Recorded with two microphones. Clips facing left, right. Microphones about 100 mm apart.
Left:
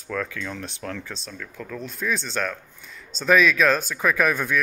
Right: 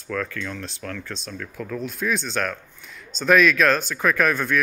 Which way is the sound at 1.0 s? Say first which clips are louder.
Right 3 dB; 5° left (ahead or behind).